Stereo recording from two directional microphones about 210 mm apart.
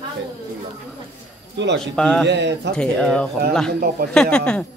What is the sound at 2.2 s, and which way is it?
Speech, 55° right (ahead or behind).